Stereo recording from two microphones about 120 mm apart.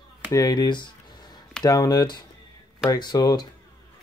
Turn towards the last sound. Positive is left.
turn(degrees=35)  # may be behind; listen again after turning